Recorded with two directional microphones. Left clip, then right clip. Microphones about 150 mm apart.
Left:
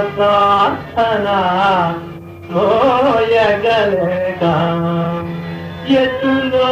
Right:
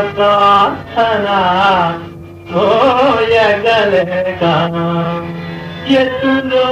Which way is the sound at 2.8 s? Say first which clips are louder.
Right 2 dB; 25° right (ahead or behind).